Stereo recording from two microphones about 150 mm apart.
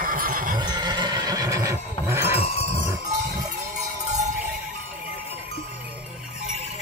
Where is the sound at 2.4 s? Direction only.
40° left (ahead or behind).